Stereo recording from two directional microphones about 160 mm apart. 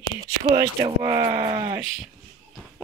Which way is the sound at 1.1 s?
35° right (ahead or behind).